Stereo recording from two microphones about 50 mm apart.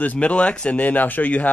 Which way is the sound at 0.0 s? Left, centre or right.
Left.